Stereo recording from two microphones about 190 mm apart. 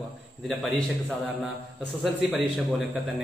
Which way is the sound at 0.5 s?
5° left (ahead or behind).